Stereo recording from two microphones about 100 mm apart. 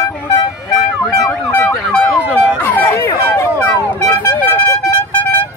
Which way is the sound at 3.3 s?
30° left (ahead or behind).